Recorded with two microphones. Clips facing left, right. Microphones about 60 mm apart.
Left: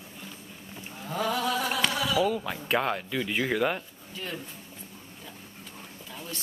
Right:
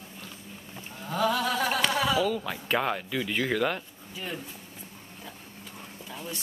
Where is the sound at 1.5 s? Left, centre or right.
Right.